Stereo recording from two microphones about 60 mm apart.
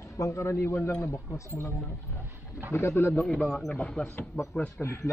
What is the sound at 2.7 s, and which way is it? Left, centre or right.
Speech, left.